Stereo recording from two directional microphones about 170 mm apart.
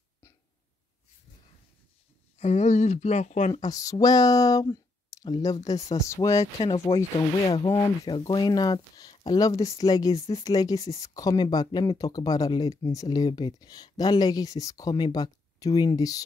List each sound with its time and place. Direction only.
2.3 s speech: 40° left (ahead or behind)
3.6 s speech: 20° left (ahead or behind)